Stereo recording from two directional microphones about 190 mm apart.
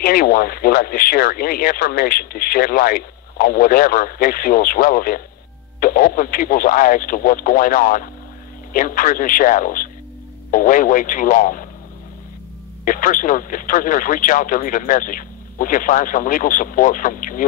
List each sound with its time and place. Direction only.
0.0 s speech: 50° left (ahead or behind)
12.8 s speech: 45° left (ahead or behind)